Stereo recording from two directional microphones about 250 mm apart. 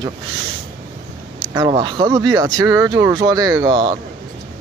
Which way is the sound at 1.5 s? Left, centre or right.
Centre.